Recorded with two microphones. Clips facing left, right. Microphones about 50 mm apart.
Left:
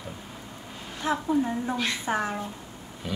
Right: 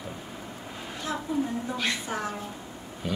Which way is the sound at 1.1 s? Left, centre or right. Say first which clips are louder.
Left 4 dB; left.